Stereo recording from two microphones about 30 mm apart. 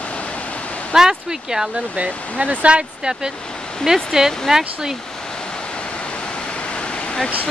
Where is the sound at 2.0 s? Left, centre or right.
Right.